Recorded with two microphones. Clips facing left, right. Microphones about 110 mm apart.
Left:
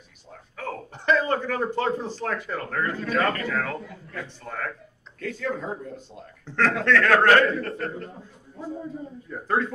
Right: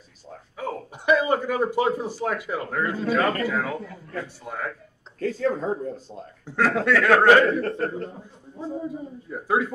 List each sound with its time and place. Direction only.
0.6 s speech: 15° right (ahead or behind)
5.2 s speech: 35° right (ahead or behind)
6.4 s a man's voice: 10° right (ahead or behind)
7.6 s speech: 30° right (ahead or behind)
8.8 s speech: 10° right (ahead or behind)